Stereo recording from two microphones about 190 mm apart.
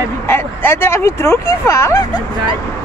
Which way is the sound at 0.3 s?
10° left (ahead or behind).